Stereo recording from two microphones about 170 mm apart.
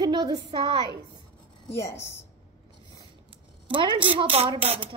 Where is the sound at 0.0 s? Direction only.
25° right (ahead or behind).